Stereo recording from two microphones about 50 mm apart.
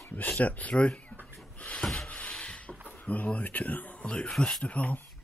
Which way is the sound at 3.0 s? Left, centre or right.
Left.